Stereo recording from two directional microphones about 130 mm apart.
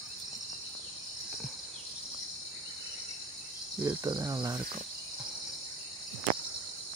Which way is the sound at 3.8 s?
30° right (ahead or behind).